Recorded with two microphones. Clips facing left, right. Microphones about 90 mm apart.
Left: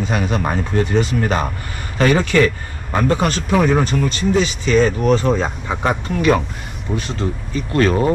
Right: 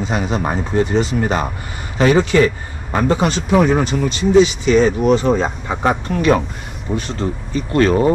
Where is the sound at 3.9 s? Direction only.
45° left (ahead or behind).